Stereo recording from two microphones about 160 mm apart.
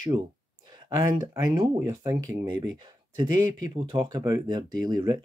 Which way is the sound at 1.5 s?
25° right (ahead or behind).